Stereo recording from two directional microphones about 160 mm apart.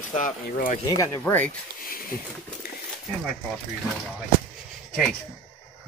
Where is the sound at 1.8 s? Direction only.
65° left (ahead or behind).